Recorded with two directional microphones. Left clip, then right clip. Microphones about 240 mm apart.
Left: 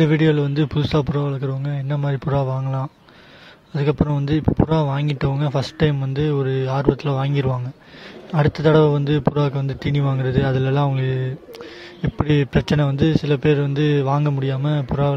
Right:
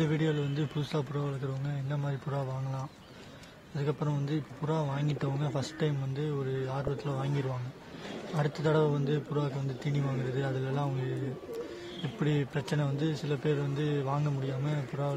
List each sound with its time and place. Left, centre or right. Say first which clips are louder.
0.0 s speech: left 14 dB; left
12.4 s speech: left 13 dB; left